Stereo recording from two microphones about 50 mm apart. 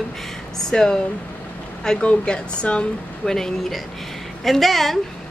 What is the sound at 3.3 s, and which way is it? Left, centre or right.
A woman's voice, centre.